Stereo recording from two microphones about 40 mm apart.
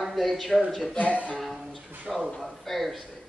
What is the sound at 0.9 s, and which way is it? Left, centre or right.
Speech, left.